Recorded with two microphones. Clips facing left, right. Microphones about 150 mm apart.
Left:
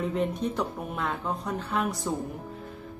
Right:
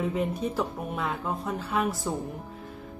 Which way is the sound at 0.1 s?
5° right (ahead or behind).